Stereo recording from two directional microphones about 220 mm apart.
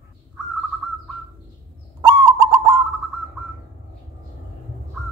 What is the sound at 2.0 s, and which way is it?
Bird, 20° right (ahead or behind).